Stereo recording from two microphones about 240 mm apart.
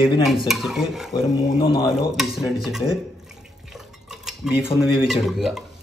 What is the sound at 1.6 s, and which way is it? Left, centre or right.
Speech, left.